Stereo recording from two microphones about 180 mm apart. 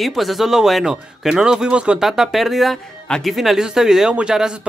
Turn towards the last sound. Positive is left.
turn(degrees=-5)  # may be behind; listen again after turning